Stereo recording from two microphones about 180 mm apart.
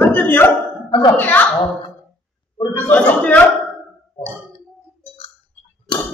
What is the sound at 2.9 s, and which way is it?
Speech, 10° left (ahead or behind).